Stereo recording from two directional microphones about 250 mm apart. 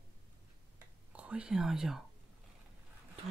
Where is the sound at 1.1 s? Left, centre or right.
Centre.